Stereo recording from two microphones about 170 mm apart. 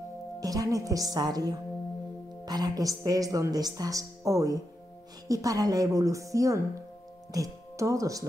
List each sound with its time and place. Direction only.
0.4 s a woman's voice: 20° right (ahead or behind)